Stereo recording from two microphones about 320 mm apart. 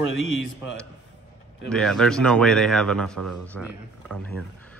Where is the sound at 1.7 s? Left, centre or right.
Centre.